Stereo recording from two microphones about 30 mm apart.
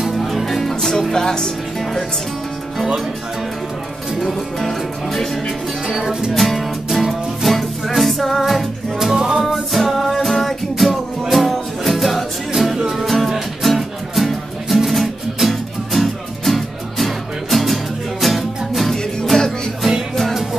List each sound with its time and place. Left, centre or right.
0.1 s music: centre
1.1 s speech: left
4.2 s music: centre
5.9 s music: centre
6.3 s music: centre
9.0 s music: centre
9.4 s music: centre